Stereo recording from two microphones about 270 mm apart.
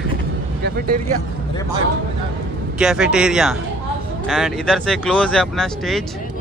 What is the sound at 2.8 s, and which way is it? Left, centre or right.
Speech, centre.